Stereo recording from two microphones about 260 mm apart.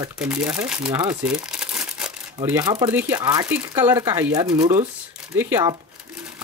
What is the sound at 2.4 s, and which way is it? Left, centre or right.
Speech, centre.